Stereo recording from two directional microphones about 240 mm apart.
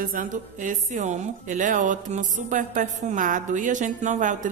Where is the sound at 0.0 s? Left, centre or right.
Right.